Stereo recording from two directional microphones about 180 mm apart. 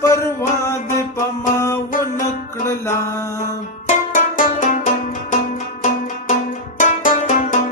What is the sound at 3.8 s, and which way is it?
Music, 45° left (ahead or behind).